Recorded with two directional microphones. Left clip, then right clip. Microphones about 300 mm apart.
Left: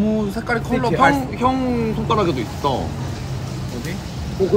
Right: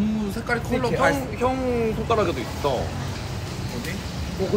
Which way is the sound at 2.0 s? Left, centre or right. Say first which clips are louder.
Left 5 dB; left.